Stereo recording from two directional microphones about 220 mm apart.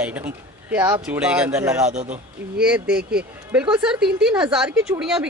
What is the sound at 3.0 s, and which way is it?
Speech, 45° right (ahead or behind).